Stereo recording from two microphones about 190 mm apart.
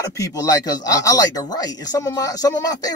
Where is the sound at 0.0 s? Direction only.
20° left (ahead or behind).